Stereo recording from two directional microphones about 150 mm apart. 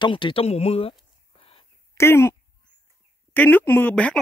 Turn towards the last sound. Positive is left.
turn(degrees=10)  # may be behind; listen again after turning